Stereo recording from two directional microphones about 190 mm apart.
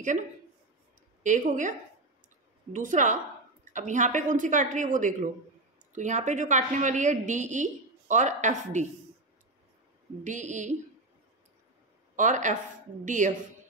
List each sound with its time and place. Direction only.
1.2 s a woman's voice: 40° right (ahead or behind)
10.2 s a woman's voice: 40° right (ahead or behind)
12.2 s a woman's voice: 40° right (ahead or behind)